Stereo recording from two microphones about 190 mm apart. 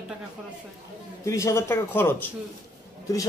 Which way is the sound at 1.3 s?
15° left (ahead or behind).